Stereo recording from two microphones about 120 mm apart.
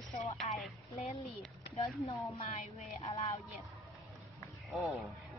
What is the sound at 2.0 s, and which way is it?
Speech, 55° left (ahead or behind).